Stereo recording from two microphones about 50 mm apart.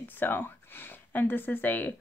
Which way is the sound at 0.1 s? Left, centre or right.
Left.